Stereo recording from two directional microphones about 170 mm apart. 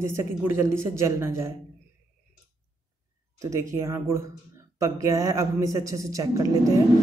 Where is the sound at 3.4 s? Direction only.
20° right (ahead or behind).